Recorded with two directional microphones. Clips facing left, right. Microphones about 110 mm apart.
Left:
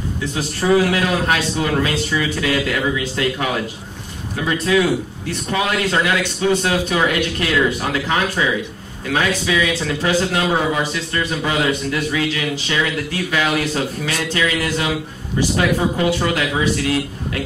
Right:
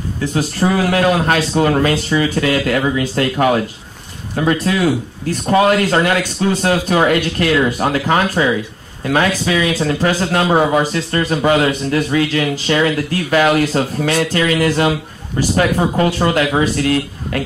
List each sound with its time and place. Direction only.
0.2 s a man's voice: 40° right (ahead or behind)